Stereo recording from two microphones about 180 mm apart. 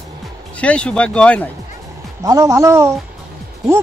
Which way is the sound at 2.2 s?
20° right (ahead or behind).